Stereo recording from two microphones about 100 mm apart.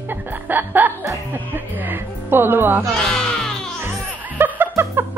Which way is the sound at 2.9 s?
5° left (ahead or behind).